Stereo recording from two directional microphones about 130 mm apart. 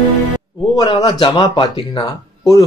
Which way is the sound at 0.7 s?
35° left (ahead or behind).